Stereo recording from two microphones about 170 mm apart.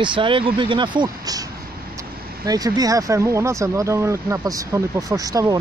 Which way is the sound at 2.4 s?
20° right (ahead or behind).